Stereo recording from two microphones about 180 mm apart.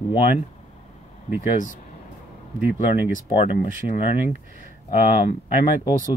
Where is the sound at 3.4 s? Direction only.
35° left (ahead or behind).